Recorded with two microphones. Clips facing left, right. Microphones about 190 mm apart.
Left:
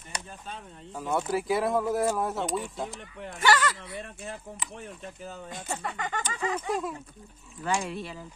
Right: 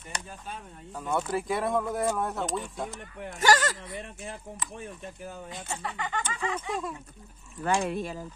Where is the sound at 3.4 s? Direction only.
40° right (ahead or behind).